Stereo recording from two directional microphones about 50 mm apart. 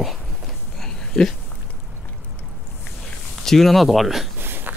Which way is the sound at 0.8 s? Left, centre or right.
Centre.